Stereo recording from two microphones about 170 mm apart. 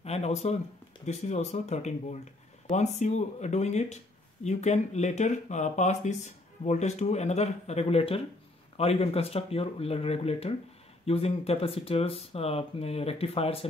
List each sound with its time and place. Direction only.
0.0 s speech: 40° left (ahead or behind)